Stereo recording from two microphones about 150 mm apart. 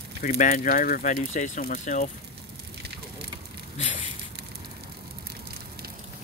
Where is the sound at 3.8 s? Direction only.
55° left (ahead or behind).